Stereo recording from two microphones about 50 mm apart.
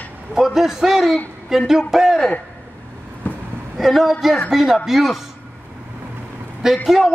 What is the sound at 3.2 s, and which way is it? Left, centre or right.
Vehicle, left.